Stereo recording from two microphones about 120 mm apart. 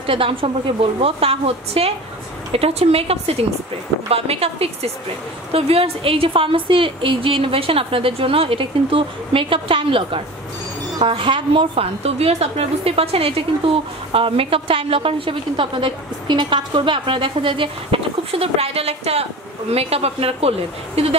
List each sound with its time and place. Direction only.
0.0 s a woman's voice: 50° right (ahead or behind)